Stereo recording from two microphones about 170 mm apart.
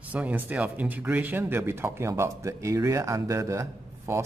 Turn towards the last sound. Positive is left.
turn(degrees=-15)  # may be behind; listen again after turning